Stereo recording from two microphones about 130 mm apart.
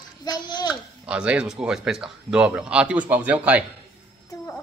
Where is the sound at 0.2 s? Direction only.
30° left (ahead or behind).